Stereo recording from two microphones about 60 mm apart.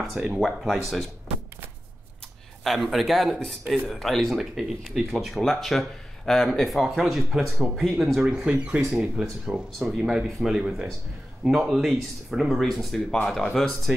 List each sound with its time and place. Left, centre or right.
0.0 s speech: centre
2.6 s speech: centre
8.2 s speech: centre
9.2 s speech: centre
10.1 s speech: centre